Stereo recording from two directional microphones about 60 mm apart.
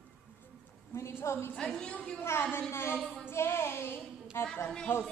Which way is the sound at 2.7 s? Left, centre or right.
Left.